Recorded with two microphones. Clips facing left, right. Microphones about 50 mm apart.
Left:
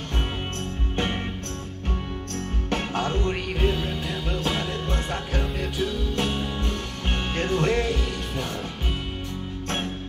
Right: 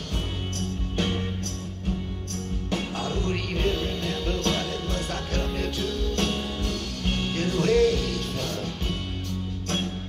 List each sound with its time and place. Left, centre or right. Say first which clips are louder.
0.6 s music: right 1 dB; left
1.9 s music: even; left
3.5 s music: left 1 dB; centre
5.3 s music: even; centre